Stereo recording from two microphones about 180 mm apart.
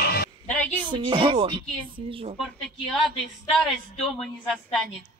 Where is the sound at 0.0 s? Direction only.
60° left (ahead or behind).